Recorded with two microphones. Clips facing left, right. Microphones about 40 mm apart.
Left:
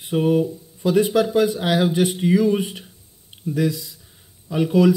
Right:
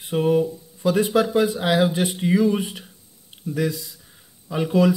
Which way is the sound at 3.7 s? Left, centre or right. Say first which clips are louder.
Left 3 dB; right.